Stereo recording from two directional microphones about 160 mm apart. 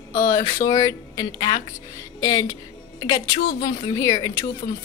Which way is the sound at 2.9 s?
30° left (ahead or behind).